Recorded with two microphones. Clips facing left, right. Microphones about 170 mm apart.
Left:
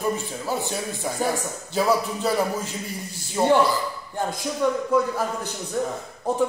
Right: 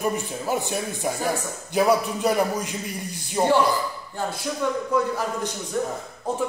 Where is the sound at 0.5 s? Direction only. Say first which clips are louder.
Right 1 dB; 15° right (ahead or behind).